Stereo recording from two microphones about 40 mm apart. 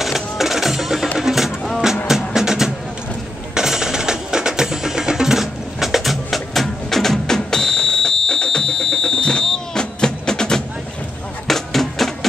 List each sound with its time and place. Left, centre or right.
0.0 s music: centre
9.4 s vehicle: centre
9.9 s music: centre
11.4 s music: centre